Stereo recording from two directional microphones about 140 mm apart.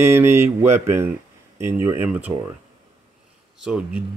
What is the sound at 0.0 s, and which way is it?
Speech, 20° right (ahead or behind).